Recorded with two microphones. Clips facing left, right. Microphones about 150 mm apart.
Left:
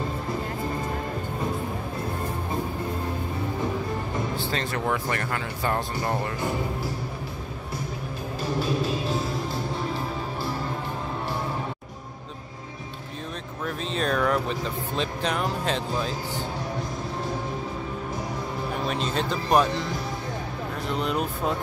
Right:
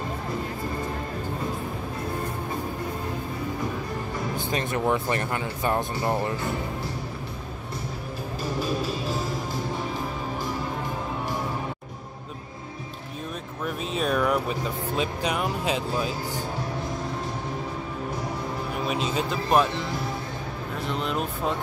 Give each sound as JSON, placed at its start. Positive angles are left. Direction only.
{"t": 4.4, "sound": "speech", "side_deg": -15}
{"t": 13.7, "sound": "speech", "side_deg": -10}
{"t": 18.9, "sound": "speech", "side_deg": -5}
{"t": 20.8, "sound": "speech", "side_deg": 0}